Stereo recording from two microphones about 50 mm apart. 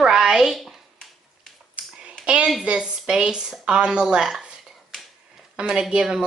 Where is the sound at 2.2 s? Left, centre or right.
Right.